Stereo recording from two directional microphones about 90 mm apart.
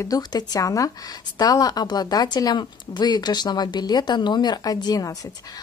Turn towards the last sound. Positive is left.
turn(degrees=40)  # may be behind; listen again after turning